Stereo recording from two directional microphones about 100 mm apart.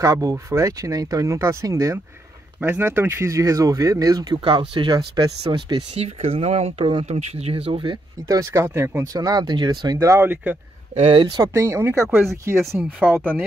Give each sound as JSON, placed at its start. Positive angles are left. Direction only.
{"t": 0.0, "sound": "speech", "side_deg": -35}
{"t": 4.5, "sound": "speech", "side_deg": -55}
{"t": 5.9, "sound": "speech", "side_deg": -85}
{"t": 8.3, "sound": "speech", "side_deg": -35}
{"t": 8.6, "sound": "speech", "side_deg": -25}
{"t": 9.0, "sound": "speech", "side_deg": -40}
{"t": 9.9, "sound": "speech", "side_deg": -30}
{"t": 10.2, "sound": "a man's voice", "side_deg": -15}
{"t": 11.0, "sound": "speech", "side_deg": -80}
{"t": 11.4, "sound": "speech", "side_deg": -30}